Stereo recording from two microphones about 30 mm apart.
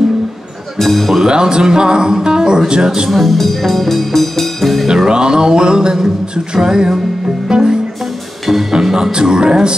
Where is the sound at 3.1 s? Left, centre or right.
Centre.